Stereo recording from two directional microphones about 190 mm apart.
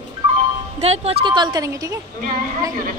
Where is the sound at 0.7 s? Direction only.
35° right (ahead or behind); by 1.9 s 20° right (ahead or behind).